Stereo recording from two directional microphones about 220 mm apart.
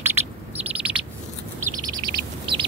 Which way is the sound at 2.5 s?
20° right (ahead or behind).